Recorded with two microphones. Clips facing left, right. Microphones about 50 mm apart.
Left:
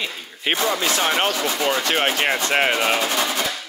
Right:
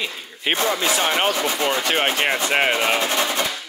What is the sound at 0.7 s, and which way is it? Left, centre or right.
Speech, centre.